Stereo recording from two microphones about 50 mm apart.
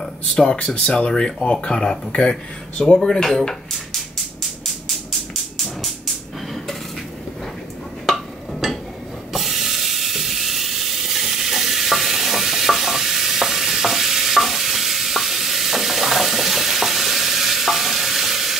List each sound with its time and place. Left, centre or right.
0.3 s speech: centre
3.1 s dishes: centre
4.8 s music: centre
8.1 s a sound: centre